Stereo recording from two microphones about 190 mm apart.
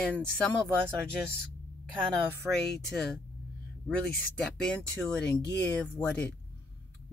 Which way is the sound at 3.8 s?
5° left (ahead or behind).